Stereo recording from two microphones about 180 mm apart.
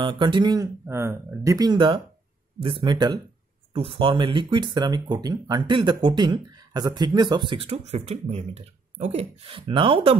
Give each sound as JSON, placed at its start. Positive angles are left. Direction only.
{"t": 0.0, "sound": "speech", "side_deg": -25}